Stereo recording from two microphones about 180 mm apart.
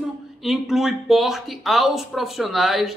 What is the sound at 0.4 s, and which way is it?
A man's voice, centre (ahead or behind).